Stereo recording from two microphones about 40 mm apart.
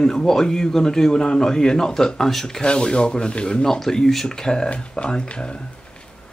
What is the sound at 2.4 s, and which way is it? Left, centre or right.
Speech, left.